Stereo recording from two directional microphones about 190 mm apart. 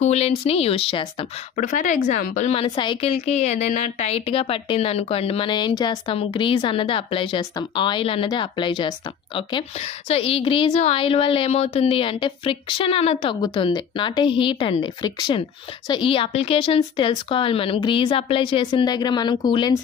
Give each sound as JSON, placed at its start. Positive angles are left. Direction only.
{"t": 0.0, "sound": "speech", "side_deg": 35}
{"t": 1.6, "sound": "speech", "side_deg": 45}
{"t": 2.7, "sound": "a woman's voice", "side_deg": 25}